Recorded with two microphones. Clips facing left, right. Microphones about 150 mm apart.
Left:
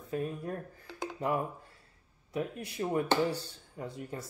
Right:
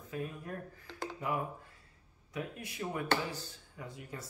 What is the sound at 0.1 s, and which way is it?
Speech, 35° left (ahead or behind).